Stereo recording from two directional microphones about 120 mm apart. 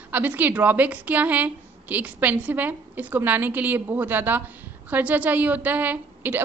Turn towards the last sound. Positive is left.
turn(degrees=-15)  # may be behind; listen again after turning